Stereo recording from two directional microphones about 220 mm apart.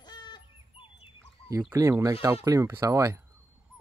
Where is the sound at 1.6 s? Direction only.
10° right (ahead or behind).